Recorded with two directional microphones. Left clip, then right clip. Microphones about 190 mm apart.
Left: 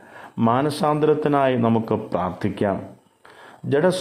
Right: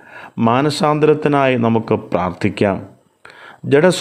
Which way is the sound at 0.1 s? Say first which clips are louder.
Right 5 dB; 20° right (ahead or behind).